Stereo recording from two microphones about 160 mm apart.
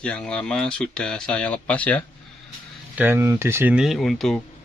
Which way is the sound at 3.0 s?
10° right (ahead or behind).